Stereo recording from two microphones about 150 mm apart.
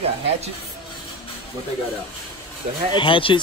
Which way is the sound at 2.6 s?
45° right (ahead or behind).